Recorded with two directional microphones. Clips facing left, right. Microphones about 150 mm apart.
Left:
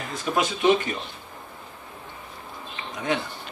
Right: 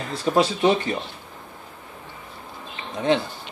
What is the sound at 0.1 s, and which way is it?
Speech, 35° right (ahead or behind).